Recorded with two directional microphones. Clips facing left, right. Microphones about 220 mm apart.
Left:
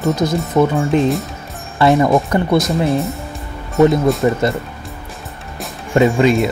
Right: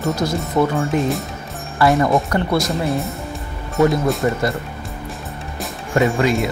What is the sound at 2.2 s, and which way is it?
Speech, 20° left (ahead or behind).